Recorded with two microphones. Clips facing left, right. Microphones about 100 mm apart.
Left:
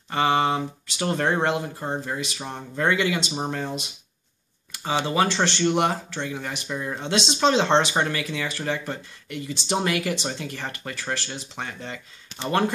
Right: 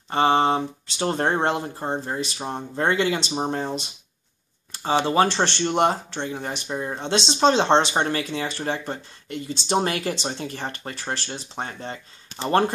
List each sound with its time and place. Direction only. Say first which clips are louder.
0.1 s speech: right 2 dB; 30° right (ahead or behind)